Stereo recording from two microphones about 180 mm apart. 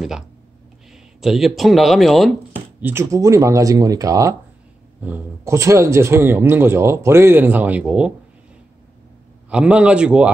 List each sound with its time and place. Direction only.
0.9 s speech: centre (ahead or behind)
2.8 s a man's voice: 15° right (ahead or behind)
9.5 s a man's voice: 5° right (ahead or behind)